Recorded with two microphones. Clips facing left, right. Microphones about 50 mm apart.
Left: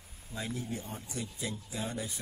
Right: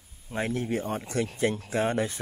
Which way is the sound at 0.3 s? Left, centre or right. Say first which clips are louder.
Right 9 dB; right.